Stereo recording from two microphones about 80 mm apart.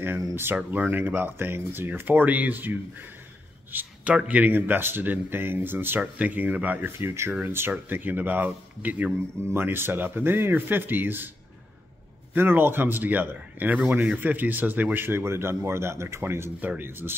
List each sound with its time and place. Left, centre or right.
0.7 s speech: right
3.7 s speech: centre
4.4 s speech: right
7.0 s speech: right
12.4 s speech: right